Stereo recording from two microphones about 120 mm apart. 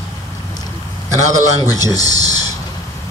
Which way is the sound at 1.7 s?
30° left (ahead or behind).